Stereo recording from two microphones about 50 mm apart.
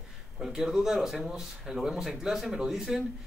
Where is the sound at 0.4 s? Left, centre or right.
Centre.